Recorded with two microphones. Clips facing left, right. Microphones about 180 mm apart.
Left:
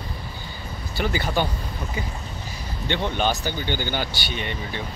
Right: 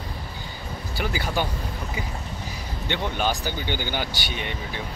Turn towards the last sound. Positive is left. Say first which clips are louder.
# left 2 dB
turn(degrees=-10)  # may be behind; listen again after turning